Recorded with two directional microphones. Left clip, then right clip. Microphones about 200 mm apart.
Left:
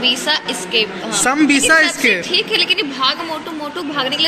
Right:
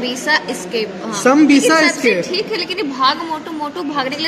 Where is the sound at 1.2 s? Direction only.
Centre (ahead or behind).